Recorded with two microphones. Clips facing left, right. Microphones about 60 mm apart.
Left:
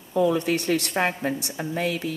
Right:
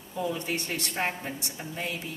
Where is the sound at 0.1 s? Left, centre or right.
Left.